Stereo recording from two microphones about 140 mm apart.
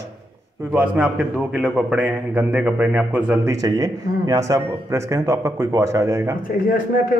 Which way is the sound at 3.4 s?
25° right (ahead or behind).